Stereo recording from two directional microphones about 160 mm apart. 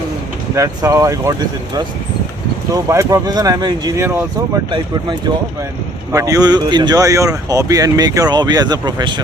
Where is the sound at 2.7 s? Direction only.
20° right (ahead or behind).